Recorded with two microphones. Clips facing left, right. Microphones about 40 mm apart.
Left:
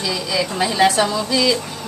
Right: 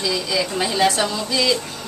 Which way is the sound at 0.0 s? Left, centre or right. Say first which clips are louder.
Even; centre.